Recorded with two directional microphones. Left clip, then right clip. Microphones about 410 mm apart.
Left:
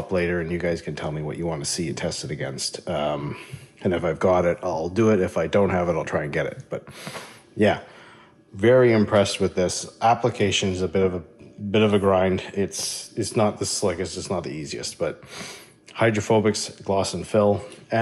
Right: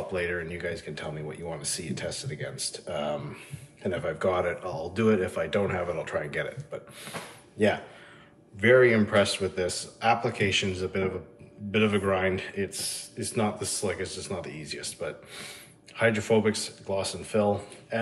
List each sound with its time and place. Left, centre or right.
0.1 s speech: centre